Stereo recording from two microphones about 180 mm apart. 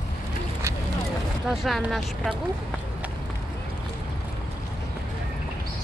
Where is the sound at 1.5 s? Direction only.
Centre (ahead or behind).